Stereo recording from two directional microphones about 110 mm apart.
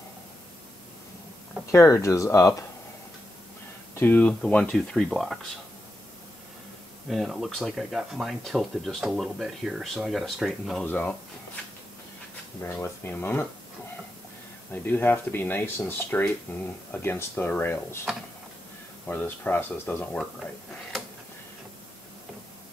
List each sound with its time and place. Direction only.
1.7 s speech: 30° left (ahead or behind)
3.9 s speech: 15° left (ahead or behind)
7.1 s speech: centre (ahead or behind)
10.9 s speech: 15° left (ahead or behind)
12.6 s speech: 20° left (ahead or behind)
14.7 s speech: 20° left (ahead or behind)
18.1 s a sound: 5° right (ahead or behind)
19.0 s speech: 15° left (ahead or behind)